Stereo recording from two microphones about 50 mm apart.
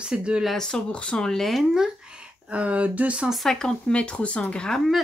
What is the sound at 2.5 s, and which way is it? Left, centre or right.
Speech, right.